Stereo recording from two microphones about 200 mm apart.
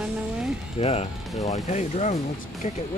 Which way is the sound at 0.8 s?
30° left (ahead or behind).